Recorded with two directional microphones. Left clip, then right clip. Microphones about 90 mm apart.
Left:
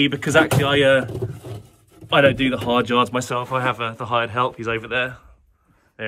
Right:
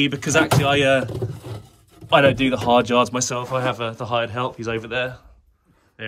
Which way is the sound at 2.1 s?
25° right (ahead or behind).